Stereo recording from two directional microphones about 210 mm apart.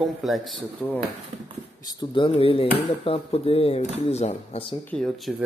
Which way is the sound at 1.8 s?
20° left (ahead or behind).